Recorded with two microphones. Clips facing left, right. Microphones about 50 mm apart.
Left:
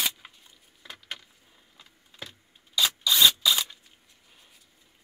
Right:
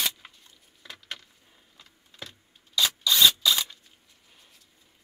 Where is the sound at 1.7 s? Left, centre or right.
Centre.